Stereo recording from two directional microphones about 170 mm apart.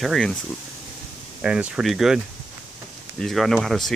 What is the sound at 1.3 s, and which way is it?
Speech, 5° right (ahead or behind).